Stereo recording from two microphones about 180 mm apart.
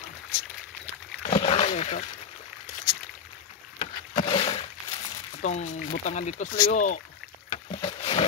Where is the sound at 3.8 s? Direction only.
30° left (ahead or behind).